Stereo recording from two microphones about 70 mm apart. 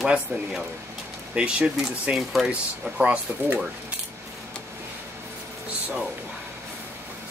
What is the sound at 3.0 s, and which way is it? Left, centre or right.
Speech, right.